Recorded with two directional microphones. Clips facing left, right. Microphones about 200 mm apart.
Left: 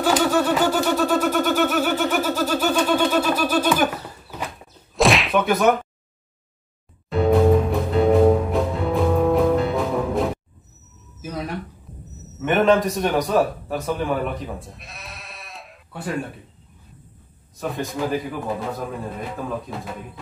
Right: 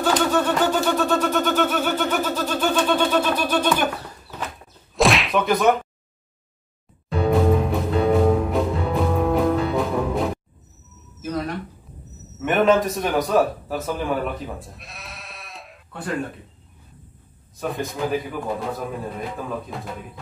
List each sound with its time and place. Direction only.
0.0 s a sound: 10° left (ahead or behind)
4.9 s whack: centre (ahead or behind)
7.1 s music: centre (ahead or behind)
11.1 s a sound: 10° left (ahead or behind)
12.4 s a man's voice: centre (ahead or behind)
17.6 s a man's voice: centre (ahead or behind)